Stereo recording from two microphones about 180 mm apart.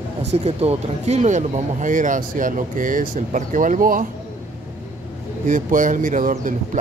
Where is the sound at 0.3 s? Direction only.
35° right (ahead or behind).